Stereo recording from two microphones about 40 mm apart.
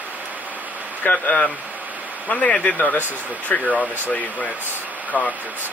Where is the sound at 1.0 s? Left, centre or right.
Left.